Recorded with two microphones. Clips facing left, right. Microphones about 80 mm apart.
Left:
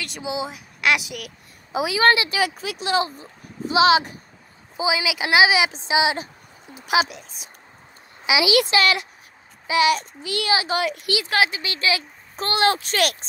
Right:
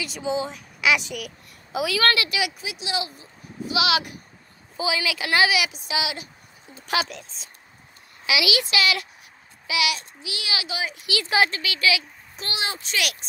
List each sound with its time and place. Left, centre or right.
0.2 s speech: centre
1.7 s speech: left
2.3 s speech: left
3.7 s speech: left
4.7 s speech: centre
6.7 s speech: centre
8.6 s speech: left
9.7 s child singing: left
10.5 s speech: left
10.8 s speech: left
11.2 s speech: centre
11.6 s speech: left